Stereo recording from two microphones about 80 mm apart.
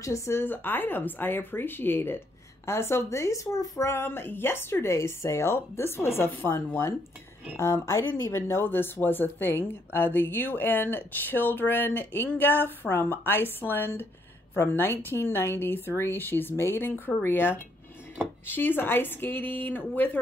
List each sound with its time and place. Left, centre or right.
0.0 s speech: left